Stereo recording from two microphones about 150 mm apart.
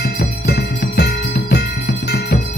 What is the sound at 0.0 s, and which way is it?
Music, 90° left.